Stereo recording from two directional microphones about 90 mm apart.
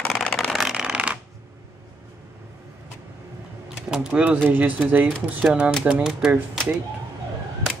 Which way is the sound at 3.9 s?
10° right (ahead or behind).